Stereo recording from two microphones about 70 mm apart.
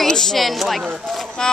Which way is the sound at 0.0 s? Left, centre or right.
Centre.